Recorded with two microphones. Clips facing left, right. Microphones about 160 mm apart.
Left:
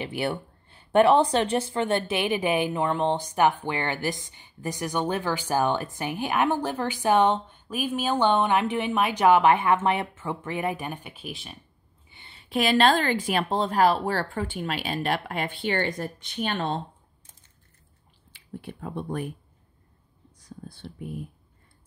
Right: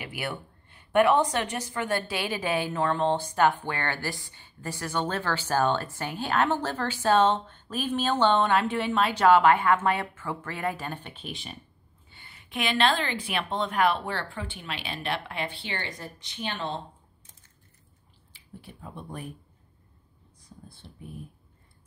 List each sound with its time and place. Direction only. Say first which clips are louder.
0.0 s a woman's voice: left 6 dB; 30° left (ahead or behind); by 11.5 s 5° left (ahead or behind)
12.1 s a woman's voice: left 10 dB; 25° left (ahead or behind); by 16.8 s 50° left (ahead or behind)
18.3 s speech: left 8 dB; 65° left (ahead or behind)
20.3 s whispering: left 7 dB; 80° left